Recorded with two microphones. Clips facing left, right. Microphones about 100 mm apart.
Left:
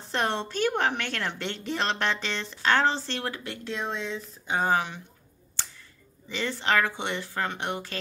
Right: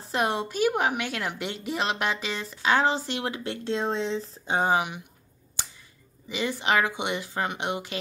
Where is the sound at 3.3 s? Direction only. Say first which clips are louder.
Right 5 dB; 30° right (ahead or behind).